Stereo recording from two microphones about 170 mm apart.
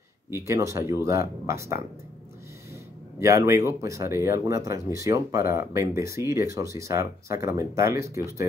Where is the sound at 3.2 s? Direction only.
15° right (ahead or behind).